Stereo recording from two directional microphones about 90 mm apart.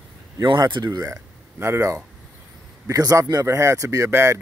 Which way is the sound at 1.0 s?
30° right (ahead or behind).